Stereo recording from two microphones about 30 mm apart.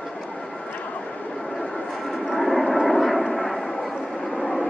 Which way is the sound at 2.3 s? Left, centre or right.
Centre.